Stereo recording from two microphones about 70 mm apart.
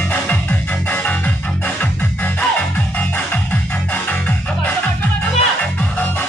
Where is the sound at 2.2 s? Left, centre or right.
Left.